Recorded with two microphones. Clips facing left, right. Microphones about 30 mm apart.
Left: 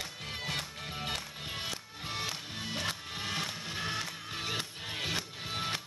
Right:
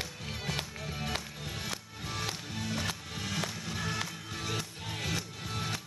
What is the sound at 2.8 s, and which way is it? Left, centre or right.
Music, left.